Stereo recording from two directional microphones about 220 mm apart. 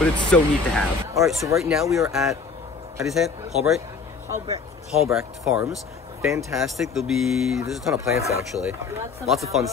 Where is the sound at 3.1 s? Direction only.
Centre (ahead or behind).